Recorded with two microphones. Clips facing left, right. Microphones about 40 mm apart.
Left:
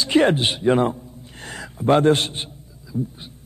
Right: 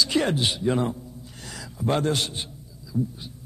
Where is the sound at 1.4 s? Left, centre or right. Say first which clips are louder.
Left 2 dB; left.